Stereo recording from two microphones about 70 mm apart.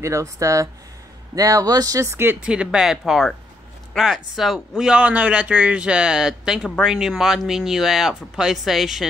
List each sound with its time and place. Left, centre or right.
0.0 s speech: right
1.3 s speech: right
2.4 s speech: centre